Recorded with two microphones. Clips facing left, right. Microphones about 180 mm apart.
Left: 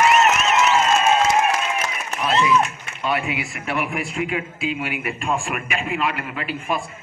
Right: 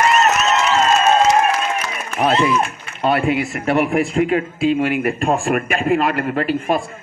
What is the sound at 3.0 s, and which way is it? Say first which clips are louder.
A man's voice: right 7 dB; 40° right (ahead or behind).